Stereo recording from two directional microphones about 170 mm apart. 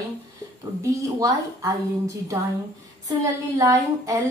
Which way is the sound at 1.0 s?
20° right (ahead or behind).